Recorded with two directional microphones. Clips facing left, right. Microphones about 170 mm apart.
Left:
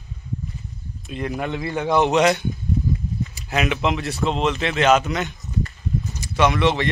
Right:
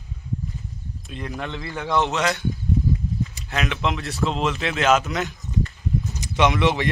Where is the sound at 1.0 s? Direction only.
5° left (ahead or behind).